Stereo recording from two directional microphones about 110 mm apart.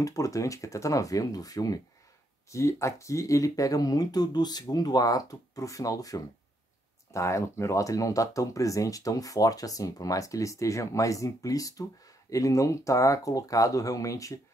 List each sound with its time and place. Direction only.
0.0 s speech: 30° left (ahead or behind)